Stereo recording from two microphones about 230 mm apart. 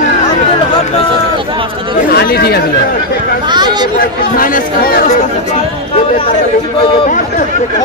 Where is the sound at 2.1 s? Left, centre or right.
Left.